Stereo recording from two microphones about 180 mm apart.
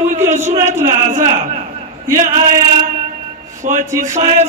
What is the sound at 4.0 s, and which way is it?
Speech, 40° right (ahead or behind).